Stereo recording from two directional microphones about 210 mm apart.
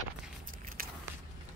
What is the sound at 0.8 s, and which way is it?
Keys jangling, 45° right (ahead or behind).